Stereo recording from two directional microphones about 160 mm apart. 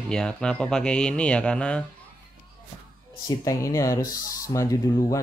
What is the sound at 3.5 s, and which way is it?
Speech, 20° left (ahead or behind).